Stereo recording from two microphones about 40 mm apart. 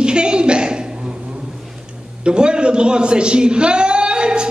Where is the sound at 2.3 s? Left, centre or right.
Right.